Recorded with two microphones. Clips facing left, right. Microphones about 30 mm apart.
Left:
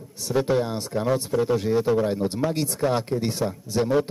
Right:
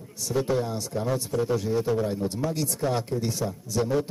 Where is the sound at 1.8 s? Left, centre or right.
Left.